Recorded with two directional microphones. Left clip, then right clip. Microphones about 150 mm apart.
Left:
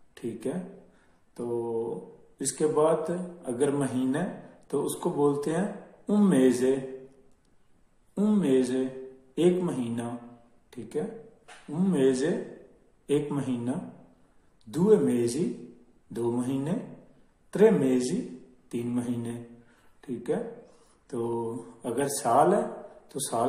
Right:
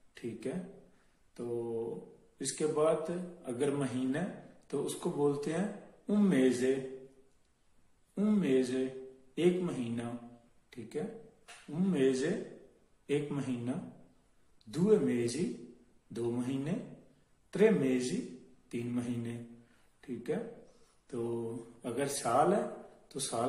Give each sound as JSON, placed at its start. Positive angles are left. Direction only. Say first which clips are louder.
{"t": 0.1, "sound": "speech", "louder": "left 6 dB", "side_deg": -15}
{"t": 1.3, "sound": "mantra", "louder": "left 6 dB", "side_deg": -20}
{"t": 2.3, "sound": "speech", "louder": "left 7 dB", "side_deg": -20}
{"t": 8.1, "sound": "a man's voice", "louder": "left 6 dB", "side_deg": -20}